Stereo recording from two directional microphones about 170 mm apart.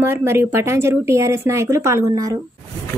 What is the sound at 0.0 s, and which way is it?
Speech, 15° right (ahead or behind).